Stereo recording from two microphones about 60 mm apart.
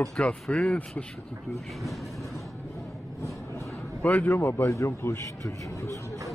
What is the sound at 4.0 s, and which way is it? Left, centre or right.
Speech, left.